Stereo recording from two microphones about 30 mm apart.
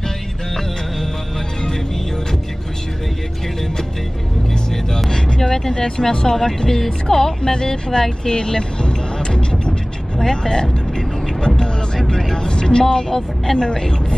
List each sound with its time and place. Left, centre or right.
5.1 s vehicle: centre
6.3 s speech: centre